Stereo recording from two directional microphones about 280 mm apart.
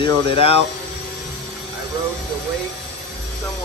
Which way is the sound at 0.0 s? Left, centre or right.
Centre.